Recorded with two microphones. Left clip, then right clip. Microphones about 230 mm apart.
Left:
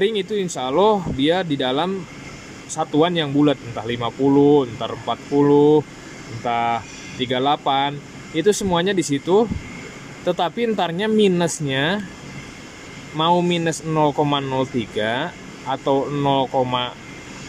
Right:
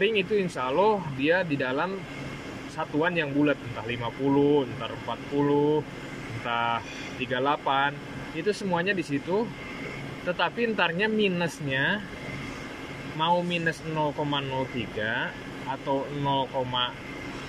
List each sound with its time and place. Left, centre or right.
0.0 s speech: left
13.2 s speech: left